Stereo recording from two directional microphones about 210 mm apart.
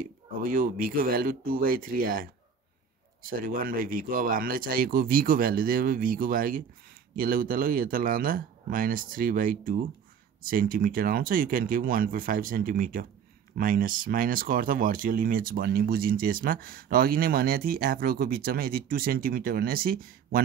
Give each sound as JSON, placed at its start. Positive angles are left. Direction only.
{"t": 0.0, "sound": "speech", "side_deg": -40}